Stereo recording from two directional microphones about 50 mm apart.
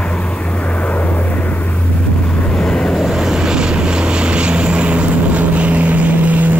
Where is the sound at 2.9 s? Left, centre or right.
Centre.